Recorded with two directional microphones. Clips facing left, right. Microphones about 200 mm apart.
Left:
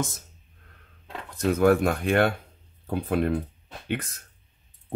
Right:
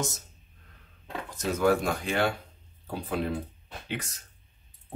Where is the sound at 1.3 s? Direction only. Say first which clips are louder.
Left 5 dB; 60° left (ahead or behind).